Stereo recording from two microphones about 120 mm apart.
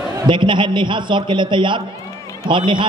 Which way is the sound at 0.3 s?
40° right (ahead or behind).